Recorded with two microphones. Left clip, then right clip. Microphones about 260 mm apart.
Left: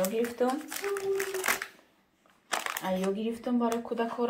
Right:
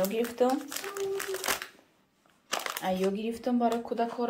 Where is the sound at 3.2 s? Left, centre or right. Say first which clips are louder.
Right 2 dB; centre.